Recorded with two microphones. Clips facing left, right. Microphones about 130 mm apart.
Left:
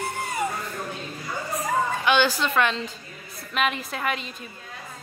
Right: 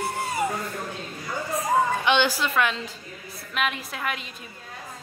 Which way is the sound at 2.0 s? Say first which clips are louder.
Left 1 dB; 20° right (ahead or behind).